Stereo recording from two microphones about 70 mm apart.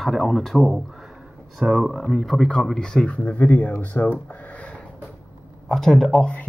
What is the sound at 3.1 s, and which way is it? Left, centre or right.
Speech, centre.